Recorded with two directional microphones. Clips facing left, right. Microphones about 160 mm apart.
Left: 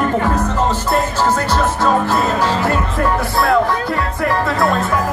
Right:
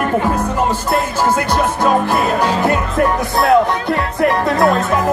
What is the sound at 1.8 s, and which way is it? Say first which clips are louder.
Music: right 1 dB; 15° right (ahead or behind).